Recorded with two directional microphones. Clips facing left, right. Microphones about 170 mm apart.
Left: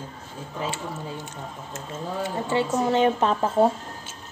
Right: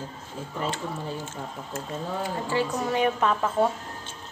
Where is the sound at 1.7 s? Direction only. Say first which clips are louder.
Even; 20° left (ahead or behind).